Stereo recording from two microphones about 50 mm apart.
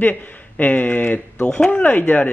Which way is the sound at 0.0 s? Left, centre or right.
Left.